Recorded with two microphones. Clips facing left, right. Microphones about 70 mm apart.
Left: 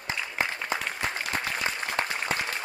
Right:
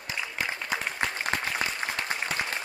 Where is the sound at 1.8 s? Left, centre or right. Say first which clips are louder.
Even; centre.